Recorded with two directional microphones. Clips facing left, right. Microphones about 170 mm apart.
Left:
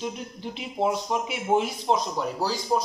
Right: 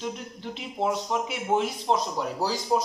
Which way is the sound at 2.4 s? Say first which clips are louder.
Right 1 dB; 15° right (ahead or behind).